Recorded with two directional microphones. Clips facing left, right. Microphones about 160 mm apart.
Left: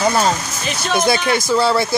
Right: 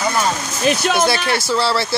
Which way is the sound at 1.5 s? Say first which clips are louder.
Left 3 dB; 15° left (ahead or behind).